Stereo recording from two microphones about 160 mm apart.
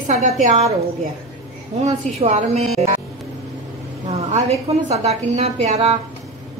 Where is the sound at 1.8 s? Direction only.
45° right (ahead or behind).